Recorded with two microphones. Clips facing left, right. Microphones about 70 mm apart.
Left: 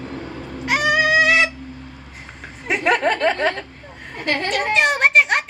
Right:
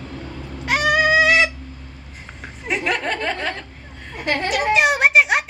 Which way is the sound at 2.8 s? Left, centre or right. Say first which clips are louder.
Left 7 dB; left.